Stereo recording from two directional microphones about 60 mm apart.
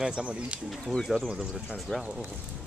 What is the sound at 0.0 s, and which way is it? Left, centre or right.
Speech, centre.